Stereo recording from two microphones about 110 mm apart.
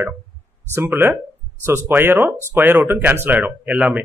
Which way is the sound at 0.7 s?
20° right (ahead or behind).